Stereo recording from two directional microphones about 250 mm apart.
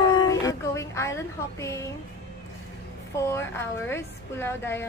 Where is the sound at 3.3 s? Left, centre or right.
Centre.